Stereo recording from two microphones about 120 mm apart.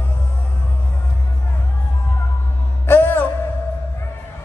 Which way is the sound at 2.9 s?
15° left (ahead or behind).